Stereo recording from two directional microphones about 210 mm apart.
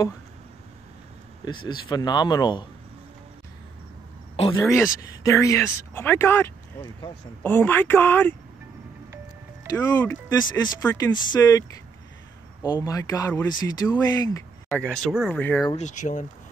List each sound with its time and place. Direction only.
1.4 s speech: 20° left (ahead or behind)
5.2 s speech: 15° left (ahead or behind)
9.7 s speech: 15° left (ahead or behind)
14.7 s speech: 5° left (ahead or behind)
15.7 s speech: 35° left (ahead or behind)